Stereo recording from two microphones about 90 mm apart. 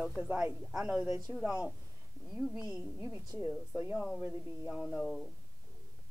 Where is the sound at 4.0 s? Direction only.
5° right (ahead or behind).